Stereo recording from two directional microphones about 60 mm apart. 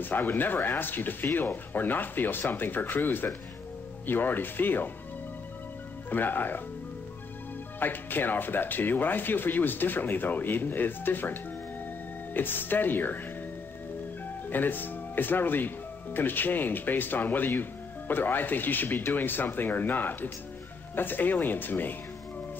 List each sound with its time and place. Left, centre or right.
0.0 s speech: left
6.0 s speech: left
7.8 s speech: left
12.4 s speech: left
14.5 s speech: left